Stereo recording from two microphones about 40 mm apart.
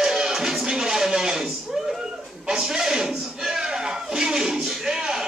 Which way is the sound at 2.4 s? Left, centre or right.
Centre.